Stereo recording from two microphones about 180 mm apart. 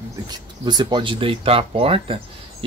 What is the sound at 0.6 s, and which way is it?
Speech, 20° right (ahead or behind).